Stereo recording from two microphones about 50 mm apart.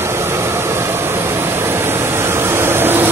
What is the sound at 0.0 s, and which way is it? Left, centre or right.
Vehicle, right.